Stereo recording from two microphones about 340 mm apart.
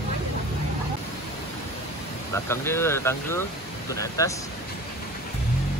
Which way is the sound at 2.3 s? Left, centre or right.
Centre.